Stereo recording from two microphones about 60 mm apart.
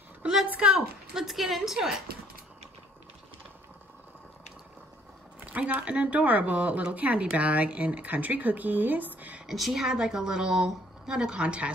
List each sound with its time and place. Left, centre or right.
0.5 s speech: centre
0.7 s a woman's voice: centre
5.4 s speech: right
9.5 s a woman's voice: centre